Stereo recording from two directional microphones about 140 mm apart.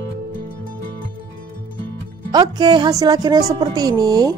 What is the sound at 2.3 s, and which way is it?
A woman's voice, 30° right (ahead or behind).